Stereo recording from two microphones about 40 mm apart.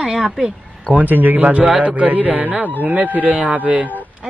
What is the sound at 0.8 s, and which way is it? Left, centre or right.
A man's voice, right.